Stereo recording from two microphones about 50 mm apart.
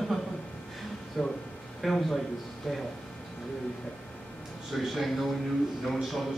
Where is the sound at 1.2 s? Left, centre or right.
Centre.